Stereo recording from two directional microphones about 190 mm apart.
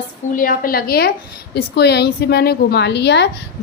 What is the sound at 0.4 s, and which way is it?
A woman's voice, 50° left (ahead or behind).